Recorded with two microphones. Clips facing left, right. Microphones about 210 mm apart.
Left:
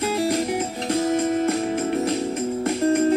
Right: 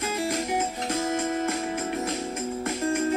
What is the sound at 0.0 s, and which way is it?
Music, 35° left (ahead or behind).